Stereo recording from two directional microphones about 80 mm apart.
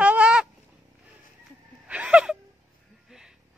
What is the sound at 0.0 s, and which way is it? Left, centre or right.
Honk, centre.